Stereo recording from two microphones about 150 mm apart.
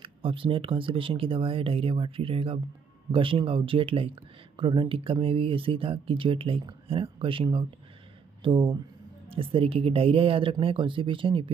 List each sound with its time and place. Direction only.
0.0 s speech: 35° right (ahead or behind)